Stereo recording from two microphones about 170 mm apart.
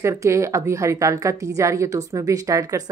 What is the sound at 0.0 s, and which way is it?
A woman's voice, 15° right (ahead or behind).